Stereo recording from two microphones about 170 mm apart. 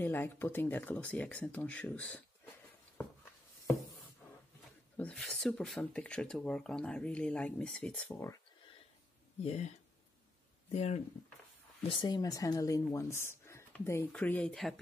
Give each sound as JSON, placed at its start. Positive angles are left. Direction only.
{"t": 0.0, "sound": "speech", "side_deg": 10}
{"t": 4.9, "sound": "speech", "side_deg": 5}
{"t": 9.4, "sound": "speech", "side_deg": 40}
{"t": 10.7, "sound": "speech", "side_deg": 45}
{"t": 11.9, "sound": "speech", "side_deg": 25}